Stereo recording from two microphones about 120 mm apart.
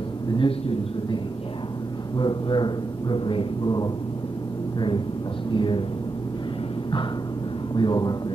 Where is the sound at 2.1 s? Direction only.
40° left (ahead or behind).